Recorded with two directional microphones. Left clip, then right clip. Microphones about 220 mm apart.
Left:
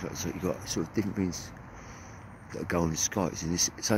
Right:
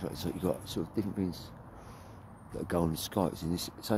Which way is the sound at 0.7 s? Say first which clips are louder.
Left 4 dB; centre (ahead or behind).